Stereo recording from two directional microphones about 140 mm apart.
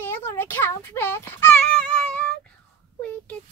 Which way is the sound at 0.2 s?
15° left (ahead or behind).